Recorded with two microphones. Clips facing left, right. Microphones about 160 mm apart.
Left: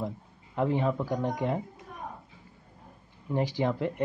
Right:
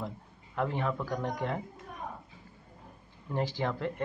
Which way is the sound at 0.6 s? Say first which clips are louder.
Left 5 dB; 20° left (ahead or behind).